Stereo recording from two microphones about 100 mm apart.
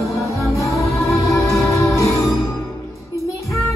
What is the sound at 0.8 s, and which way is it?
Music, 30° left (ahead or behind).